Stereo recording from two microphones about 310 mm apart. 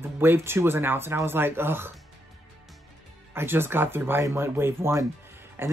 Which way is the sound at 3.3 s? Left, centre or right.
Centre.